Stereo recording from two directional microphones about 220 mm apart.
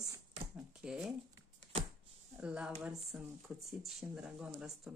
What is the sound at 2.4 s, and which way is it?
Speech, 5° right (ahead or behind).